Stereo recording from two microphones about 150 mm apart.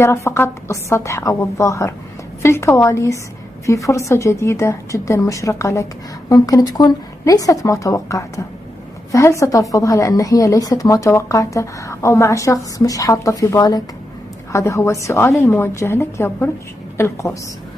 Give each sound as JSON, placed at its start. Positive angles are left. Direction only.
{"t": 0.0, "sound": "a woman's voice", "side_deg": 20}